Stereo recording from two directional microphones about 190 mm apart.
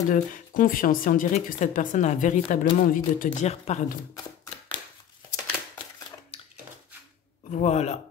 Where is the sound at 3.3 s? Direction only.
35° left (ahead or behind).